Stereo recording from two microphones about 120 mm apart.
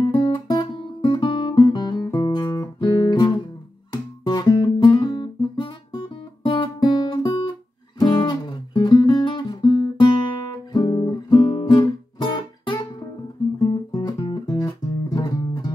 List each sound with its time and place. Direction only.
0.0 s guitar: 40° left (ahead or behind)
13.6 s music: 35° left (ahead or behind)